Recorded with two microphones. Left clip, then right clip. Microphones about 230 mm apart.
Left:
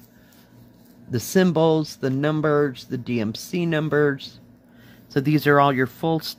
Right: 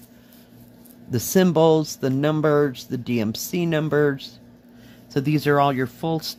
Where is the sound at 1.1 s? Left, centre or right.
Centre.